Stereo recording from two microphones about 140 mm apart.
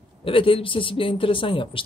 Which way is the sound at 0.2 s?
40° left (ahead or behind).